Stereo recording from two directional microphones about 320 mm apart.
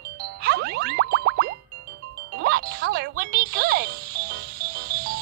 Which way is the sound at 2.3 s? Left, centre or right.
Right.